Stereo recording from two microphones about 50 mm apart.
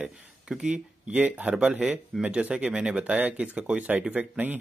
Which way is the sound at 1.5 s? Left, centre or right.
Centre.